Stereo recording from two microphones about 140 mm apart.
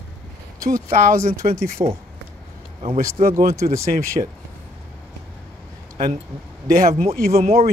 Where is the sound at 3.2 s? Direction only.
85° right.